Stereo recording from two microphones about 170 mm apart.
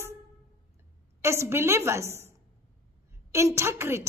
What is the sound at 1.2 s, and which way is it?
A woman's voice, 15° right (ahead or behind).